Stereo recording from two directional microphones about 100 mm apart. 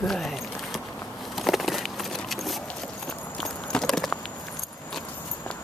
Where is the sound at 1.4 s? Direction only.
Centre (ahead or behind).